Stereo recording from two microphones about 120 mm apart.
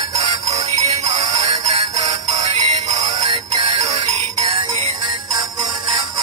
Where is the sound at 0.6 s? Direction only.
65° right (ahead or behind).